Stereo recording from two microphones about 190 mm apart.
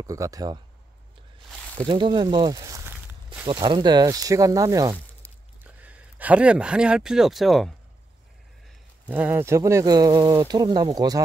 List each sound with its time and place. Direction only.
0.0 s speech: 15° right (ahead or behind)
1.9 s speech: 25° right (ahead or behind); by 7.7 s centre (ahead or behind)
9.0 s speech: 10° right (ahead or behind)